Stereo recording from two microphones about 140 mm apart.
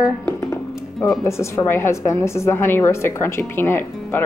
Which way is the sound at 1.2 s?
20° left (ahead or behind).